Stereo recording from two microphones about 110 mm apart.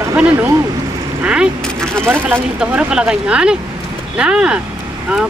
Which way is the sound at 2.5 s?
10° right (ahead or behind).